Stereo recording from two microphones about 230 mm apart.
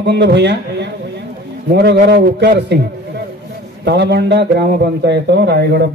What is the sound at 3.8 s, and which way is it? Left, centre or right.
A man's voice, right.